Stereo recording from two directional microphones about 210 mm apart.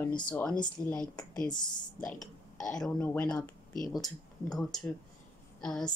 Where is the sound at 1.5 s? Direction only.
20° left (ahead or behind).